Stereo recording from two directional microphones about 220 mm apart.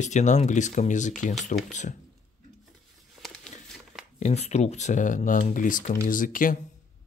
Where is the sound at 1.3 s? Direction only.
Centre (ahead or behind).